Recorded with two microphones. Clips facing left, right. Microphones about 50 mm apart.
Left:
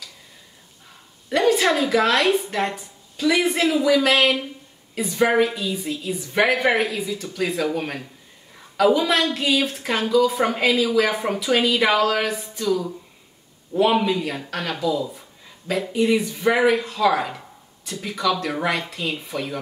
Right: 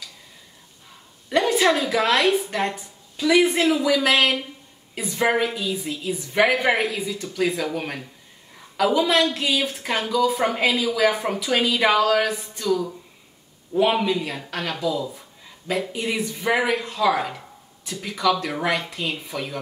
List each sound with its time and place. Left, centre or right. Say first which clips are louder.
1.3 s a sound: left 1 dB; centre
1.8 s speech: left 1 dB; centre
9.2 s speech: left 1 dB; centre